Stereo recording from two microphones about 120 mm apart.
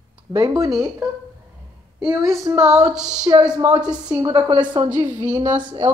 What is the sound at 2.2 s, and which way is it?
Speech, 30° right (ahead or behind).